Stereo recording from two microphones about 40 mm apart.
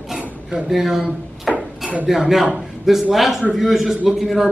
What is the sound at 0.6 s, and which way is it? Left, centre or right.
Speech, centre.